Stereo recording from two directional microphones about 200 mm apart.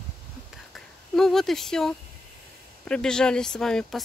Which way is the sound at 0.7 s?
Centre (ahead or behind).